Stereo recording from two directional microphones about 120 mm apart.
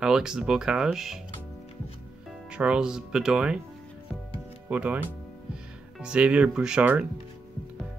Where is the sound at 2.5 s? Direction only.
10° right (ahead or behind).